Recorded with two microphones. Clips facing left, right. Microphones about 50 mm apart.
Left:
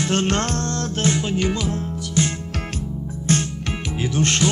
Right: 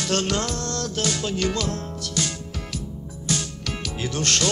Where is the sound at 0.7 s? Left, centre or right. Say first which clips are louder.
Left 4 dB; left.